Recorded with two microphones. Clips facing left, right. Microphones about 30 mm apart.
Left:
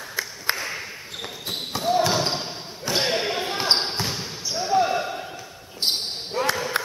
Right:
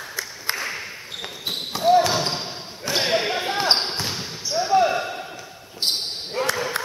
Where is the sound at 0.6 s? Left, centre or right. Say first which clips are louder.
Right 1 dB; centre.